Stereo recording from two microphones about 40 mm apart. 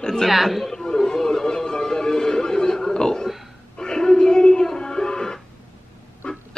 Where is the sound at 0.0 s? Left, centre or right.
Centre.